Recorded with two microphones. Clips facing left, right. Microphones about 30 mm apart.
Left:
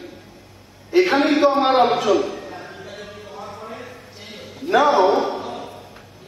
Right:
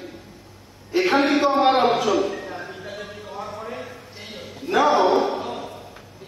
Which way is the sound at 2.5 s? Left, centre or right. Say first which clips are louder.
Right 1 dB; centre.